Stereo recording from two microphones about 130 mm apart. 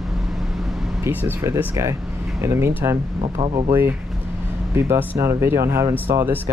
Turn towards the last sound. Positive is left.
turn(degrees=-20)  # may be behind; listen again after turning